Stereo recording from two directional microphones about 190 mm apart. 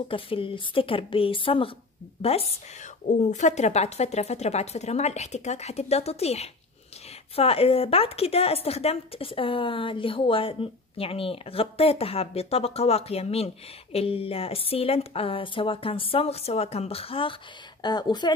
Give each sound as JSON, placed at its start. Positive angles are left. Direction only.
{"t": 0.1, "sound": "a woman's voice", "side_deg": 30}